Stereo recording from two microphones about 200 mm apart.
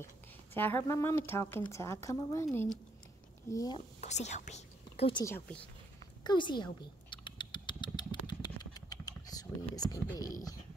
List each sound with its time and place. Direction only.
0.6 s a woman's voice: 10° left (ahead or behind)
3.5 s speech: 20° left (ahead or behind)
4.0 s speech: 35° left (ahead or behind)
5.2 s a woman's voice: 10° left (ahead or behind)
6.2 s mouse: 25° left (ahead or behind)